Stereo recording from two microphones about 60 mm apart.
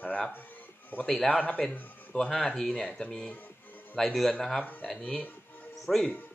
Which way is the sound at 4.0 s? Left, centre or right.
Centre.